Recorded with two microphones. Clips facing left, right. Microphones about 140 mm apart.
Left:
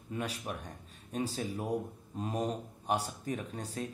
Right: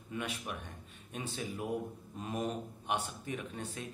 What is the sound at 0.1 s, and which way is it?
Speech, 35° left (ahead or behind).